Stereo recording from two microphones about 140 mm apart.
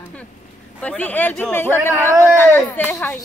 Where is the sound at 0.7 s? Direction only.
10° left (ahead or behind).